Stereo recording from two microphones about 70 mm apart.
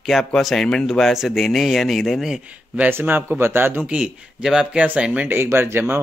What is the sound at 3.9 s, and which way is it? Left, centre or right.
Speech, centre.